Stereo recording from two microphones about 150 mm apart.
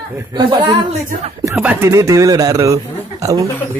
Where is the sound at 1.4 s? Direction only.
10° right (ahead or behind).